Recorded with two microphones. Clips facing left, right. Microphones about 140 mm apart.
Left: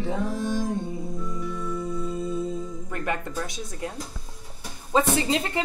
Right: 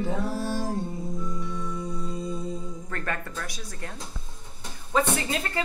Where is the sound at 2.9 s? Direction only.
15° left (ahead or behind).